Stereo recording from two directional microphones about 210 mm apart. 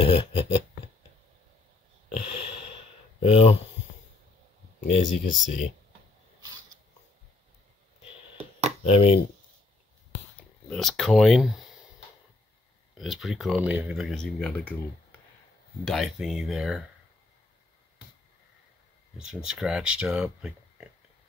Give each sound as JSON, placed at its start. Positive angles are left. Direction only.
{"t": 0.0, "sound": "a sound", "side_deg": 25}
{"t": 2.1, "sound": "a sound", "side_deg": 30}
{"t": 3.2, "sound": "speech", "side_deg": 30}
{"t": 4.7, "sound": "speech", "side_deg": 35}
{"t": 8.8, "sound": "speech", "side_deg": 25}
{"t": 10.7, "sound": "speech", "side_deg": 0}
{"t": 12.9, "sound": "speech", "side_deg": 0}
{"t": 15.8, "sound": "speech", "side_deg": 0}
{"t": 19.1, "sound": "speech", "side_deg": -5}